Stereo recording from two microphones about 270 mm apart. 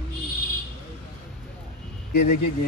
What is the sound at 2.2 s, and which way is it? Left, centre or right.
Speech, left.